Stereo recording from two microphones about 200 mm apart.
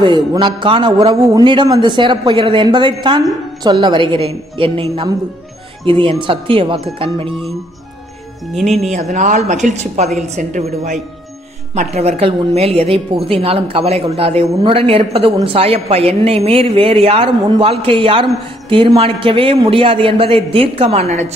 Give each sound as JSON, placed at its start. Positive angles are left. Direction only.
{"t": 0.0, "sound": "a woman's voice", "side_deg": -25}
{"t": 9.1, "sound": "a woman's voice", "side_deg": -35}